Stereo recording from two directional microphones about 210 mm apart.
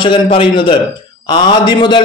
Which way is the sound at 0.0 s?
25° left (ahead or behind).